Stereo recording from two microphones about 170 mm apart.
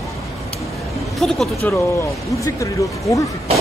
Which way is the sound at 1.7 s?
15° left (ahead or behind).